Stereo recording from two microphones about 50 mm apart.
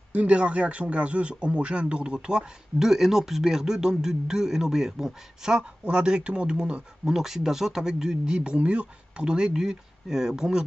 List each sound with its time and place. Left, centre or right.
0.1 s speech: right; by 5.5 s centre
5.5 s speech: centre
8.4 s speech: right